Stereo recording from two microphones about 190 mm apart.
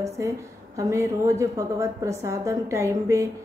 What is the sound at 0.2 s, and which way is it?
A woman's voice, 15° right (ahead or behind).